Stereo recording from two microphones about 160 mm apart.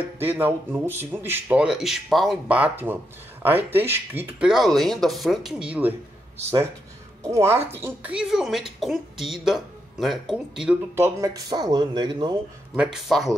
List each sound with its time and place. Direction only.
0.2 s a woman's voice: 15° right (ahead or behind)
7.2 s a woman's voice: 15° right (ahead or behind)
11.0 s speech: 20° right (ahead or behind)
12.7 s a woman's voice: 5° right (ahead or behind)